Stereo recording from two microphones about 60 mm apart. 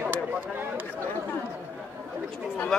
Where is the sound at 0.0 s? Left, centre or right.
Right.